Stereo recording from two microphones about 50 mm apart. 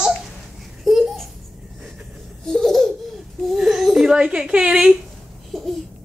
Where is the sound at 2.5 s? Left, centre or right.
Centre.